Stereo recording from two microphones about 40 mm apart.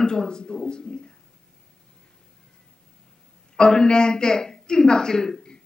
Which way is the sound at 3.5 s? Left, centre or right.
Centre.